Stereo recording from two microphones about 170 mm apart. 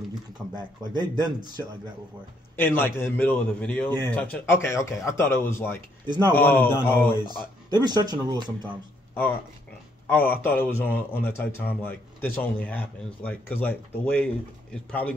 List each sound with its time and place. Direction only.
0.6 s speech: 25° right (ahead or behind)
2.5 s speech: 10° left (ahead or behind)
6.0 s speech: 25° right (ahead or behind)
6.3 s speech: 10° left (ahead or behind)
7.7 s speech: 25° right (ahead or behind)
9.1 s speech: 10° left (ahead or behind)